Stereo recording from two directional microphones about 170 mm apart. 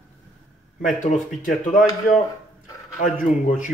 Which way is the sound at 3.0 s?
50° left (ahead or behind).